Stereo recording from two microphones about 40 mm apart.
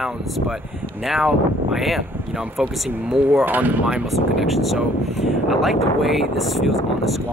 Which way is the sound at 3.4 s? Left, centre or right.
Right.